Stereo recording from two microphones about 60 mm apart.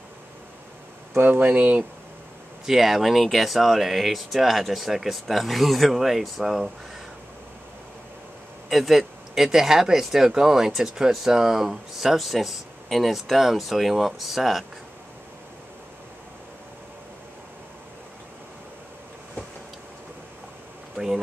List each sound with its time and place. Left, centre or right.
1.1 s speech: right
2.6 s speech: centre
8.6 s speech: centre
20.9 s a sound: centre